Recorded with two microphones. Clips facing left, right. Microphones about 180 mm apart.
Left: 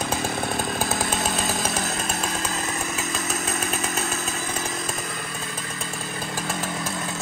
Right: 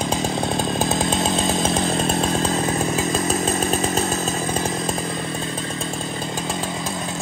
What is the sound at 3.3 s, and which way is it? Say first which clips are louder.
Chainsaw: right 7 dB; 35° right (ahead or behind).